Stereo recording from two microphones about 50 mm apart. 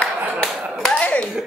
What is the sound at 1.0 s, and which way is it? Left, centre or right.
Slap, left.